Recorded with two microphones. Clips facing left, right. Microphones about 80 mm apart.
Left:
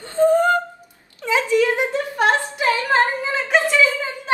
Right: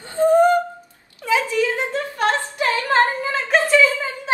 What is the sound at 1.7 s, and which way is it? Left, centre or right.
Speech, centre.